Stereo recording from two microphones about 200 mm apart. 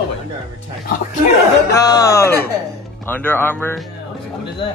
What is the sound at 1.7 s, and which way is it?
Speech, 15° left (ahead or behind).